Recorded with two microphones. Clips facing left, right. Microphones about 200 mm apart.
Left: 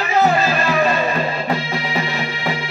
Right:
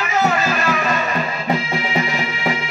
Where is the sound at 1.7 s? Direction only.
30° left (ahead or behind).